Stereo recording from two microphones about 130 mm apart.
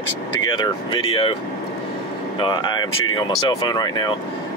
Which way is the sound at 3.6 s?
35° left (ahead or behind).